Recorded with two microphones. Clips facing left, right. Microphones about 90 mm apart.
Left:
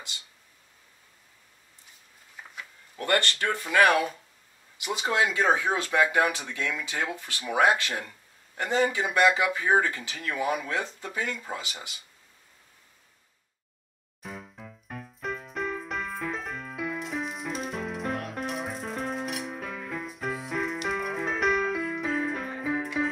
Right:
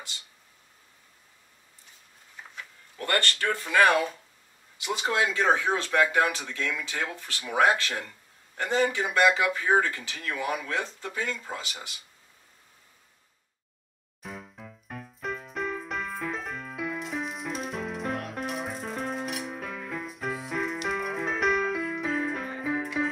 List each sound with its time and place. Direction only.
3.0 s speech: 20° left (ahead or behind)
14.2 s music: centre (ahead or behind)